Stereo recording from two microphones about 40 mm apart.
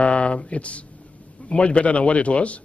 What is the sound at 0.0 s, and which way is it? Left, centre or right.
A man's voice, left.